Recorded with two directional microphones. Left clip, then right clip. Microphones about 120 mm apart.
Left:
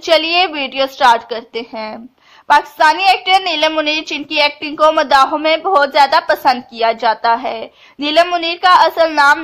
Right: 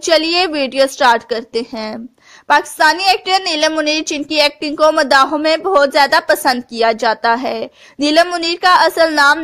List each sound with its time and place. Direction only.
0.0 s a woman's voice: 35° right (ahead or behind)